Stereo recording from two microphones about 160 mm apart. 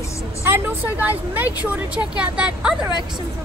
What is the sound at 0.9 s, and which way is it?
Speech, 10° right (ahead or behind).